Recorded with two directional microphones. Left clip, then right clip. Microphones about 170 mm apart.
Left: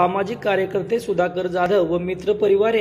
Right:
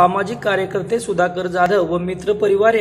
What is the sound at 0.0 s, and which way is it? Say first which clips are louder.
A man's voice: right 4 dB; centre (ahead or behind).